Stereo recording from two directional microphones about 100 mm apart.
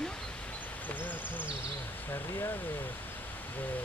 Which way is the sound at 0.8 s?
20° left (ahead or behind).